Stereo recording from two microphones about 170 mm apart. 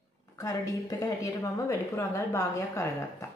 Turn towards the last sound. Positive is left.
turn(degrees=20)  # may be behind; listen again after turning